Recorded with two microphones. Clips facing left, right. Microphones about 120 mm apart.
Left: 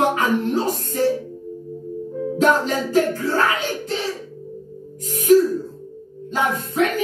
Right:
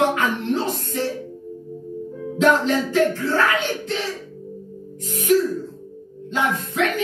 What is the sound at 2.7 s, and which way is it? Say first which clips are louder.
Music: even; 40° left (ahead or behind).